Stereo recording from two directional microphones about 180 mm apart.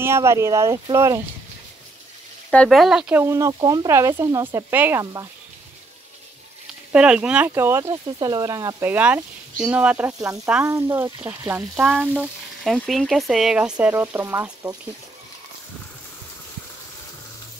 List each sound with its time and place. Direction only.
0.0 s speech: 15° right (ahead or behind)
2.5 s speech: centre (ahead or behind); by 5.3 s 15° right (ahead or behind)
6.9 s speech: 5° right (ahead or behind)